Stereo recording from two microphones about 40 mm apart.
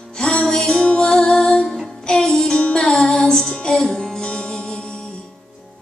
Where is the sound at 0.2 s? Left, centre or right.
Left.